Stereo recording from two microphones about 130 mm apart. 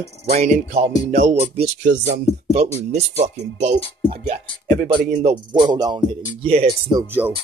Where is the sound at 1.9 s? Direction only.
90° right.